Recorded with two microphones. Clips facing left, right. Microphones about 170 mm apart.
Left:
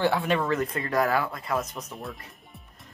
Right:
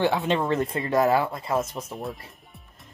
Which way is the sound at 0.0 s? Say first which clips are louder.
Right 1 dB; 20° right (ahead or behind).